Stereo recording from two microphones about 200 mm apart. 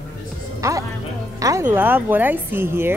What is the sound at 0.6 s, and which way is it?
Music, 15° right (ahead or behind).